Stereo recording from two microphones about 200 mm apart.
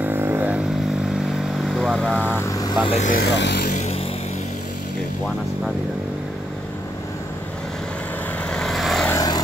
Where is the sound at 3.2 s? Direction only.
60° left (ahead or behind).